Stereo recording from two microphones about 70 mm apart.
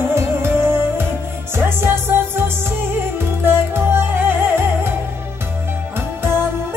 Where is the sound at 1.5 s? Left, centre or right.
Right.